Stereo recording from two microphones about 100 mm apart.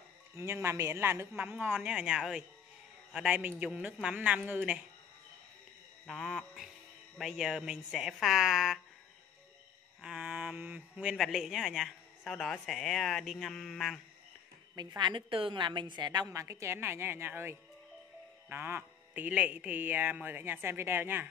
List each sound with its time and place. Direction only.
0.4 s a man's voice: 25° right (ahead or behind)
6.0 s a man's voice: 5° left (ahead or behind)
10.0 s speech: 10° right (ahead or behind)
11.1 s a man's voice: centre (ahead or behind)
14.8 s a woman's voice: 45° right (ahead or behind)
16.3 s speech: 30° right (ahead or behind)